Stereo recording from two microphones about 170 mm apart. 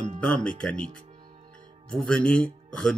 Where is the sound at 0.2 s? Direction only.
5° left (ahead or behind).